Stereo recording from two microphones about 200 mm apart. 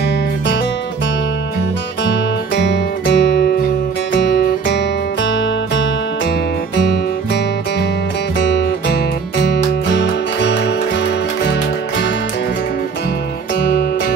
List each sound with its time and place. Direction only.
2.5 s music: 55° left (ahead or behind)
8.4 s music: 60° left (ahead or behind)
13.6 s music: 60° left (ahead or behind)